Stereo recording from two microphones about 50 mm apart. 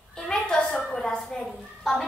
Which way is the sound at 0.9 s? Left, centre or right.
Centre.